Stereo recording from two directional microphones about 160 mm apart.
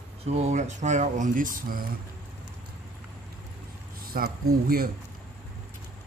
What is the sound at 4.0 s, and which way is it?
Speech, 65° right (ahead or behind).